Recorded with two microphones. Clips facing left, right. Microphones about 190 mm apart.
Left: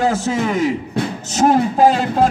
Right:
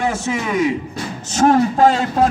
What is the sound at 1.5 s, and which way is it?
Speech, 10° left (ahead or behind).